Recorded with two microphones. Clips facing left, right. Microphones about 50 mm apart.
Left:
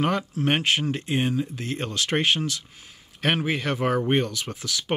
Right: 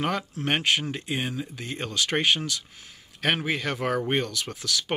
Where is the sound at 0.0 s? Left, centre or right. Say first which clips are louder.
Left 4 dB; centre.